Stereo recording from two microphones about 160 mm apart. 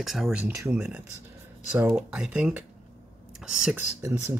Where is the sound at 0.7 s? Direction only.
10° right (ahead or behind).